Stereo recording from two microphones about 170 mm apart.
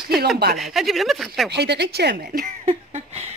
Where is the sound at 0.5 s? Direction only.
Centre (ahead or behind).